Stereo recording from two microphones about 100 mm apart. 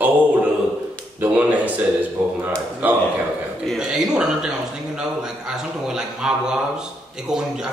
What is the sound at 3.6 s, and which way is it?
A man's voice, 5° right (ahead or behind).